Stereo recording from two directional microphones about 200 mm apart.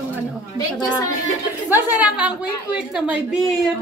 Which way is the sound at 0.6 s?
20° left (ahead or behind).